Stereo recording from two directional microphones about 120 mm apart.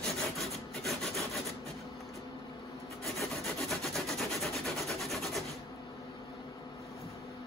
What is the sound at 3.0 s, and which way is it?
Rub, centre (ahead or behind).